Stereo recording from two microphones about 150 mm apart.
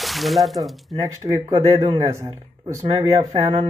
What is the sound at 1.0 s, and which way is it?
Speech, 25° right (ahead or behind).